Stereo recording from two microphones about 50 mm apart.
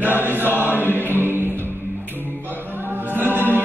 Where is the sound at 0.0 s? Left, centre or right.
Right.